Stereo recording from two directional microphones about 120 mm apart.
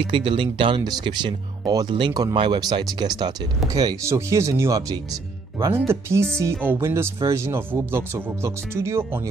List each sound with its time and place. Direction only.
0.0 s speech: 45° right (ahead or behind); by 9.2 s 20° right (ahead or behind)